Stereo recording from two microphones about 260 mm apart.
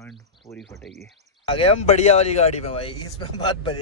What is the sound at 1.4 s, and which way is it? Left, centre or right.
Speech, left.